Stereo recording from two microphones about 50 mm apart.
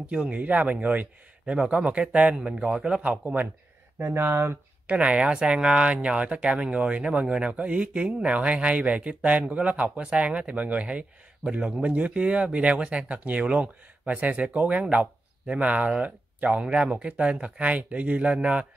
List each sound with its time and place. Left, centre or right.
0.3 s speech: right
1.4 s speech: centre
4.0 s speech: right
4.8 s speech: right